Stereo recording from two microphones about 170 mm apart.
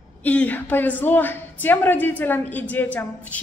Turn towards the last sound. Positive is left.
turn(degrees=10)  # may be behind; listen again after turning